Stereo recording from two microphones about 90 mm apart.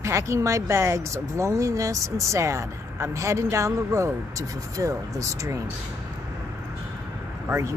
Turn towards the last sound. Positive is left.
turn(degrees=-30)  # may be behind; listen again after turning